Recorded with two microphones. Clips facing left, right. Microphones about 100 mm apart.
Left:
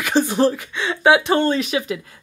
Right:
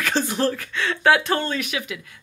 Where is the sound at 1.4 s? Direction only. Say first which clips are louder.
Left 7 dB; 30° left (ahead or behind).